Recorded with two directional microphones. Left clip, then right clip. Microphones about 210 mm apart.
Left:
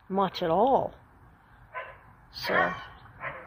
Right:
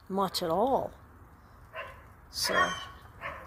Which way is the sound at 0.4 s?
15° right (ahead or behind).